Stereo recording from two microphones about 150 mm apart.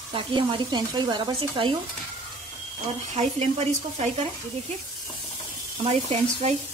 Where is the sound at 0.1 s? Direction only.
35° right (ahead or behind).